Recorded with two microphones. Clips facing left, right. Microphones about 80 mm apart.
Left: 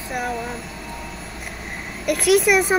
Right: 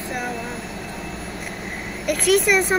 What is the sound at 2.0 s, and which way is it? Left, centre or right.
Speech, centre.